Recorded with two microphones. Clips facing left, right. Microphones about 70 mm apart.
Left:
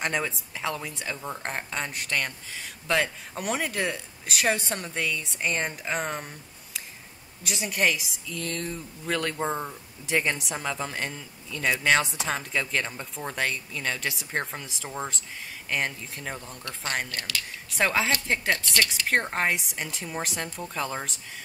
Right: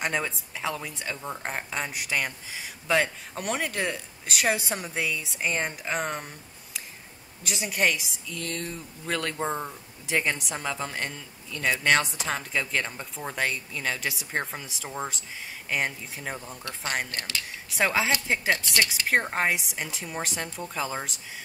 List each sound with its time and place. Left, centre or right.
0.0 s speech: centre
7.4 s speech: centre
17.1 s speech: right
17.7 s speech: centre